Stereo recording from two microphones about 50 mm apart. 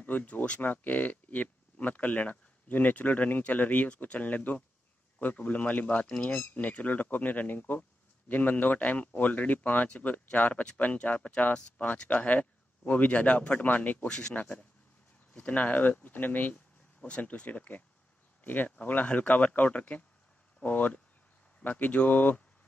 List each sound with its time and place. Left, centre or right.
0.0 s speech: left
14.0 s speech: centre
14.3 s speech: left